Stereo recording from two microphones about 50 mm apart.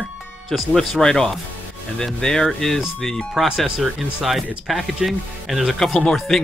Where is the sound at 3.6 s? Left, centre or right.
Centre.